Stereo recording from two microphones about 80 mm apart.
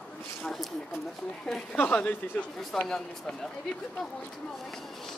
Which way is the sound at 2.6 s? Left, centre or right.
Centre.